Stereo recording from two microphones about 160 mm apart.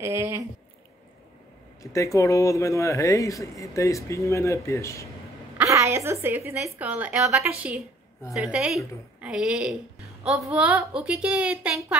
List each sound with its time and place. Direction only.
0.0 s a woman's voice: 15° right (ahead or behind)
1.8 s speech: 20° left (ahead or behind)
5.6 s a woman's voice: 15° right (ahead or behind)